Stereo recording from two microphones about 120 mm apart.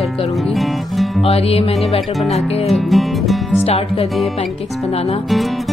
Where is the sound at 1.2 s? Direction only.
55° left (ahead or behind).